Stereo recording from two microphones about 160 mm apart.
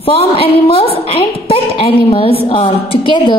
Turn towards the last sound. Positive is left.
turn(degrees=30)  # may be behind; listen again after turning